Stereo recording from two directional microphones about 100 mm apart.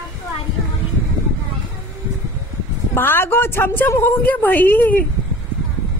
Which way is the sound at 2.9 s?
20° left (ahead or behind).